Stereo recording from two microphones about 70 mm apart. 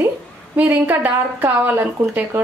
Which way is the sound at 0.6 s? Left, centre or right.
Right.